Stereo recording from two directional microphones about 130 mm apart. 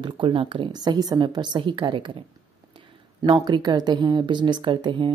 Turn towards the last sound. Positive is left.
turn(degrees=-35)  # may be behind; listen again after turning